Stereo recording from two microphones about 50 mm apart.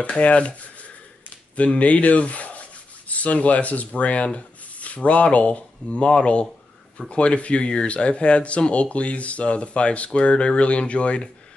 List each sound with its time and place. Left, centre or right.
0.2 s speech: left
1.6 s rub: left
7.1 s speech: left